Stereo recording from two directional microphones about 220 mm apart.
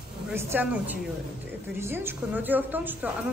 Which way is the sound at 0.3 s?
10° right (ahead or behind).